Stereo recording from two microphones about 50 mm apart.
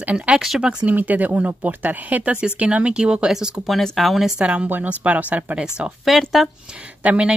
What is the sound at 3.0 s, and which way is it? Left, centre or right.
Speech, centre.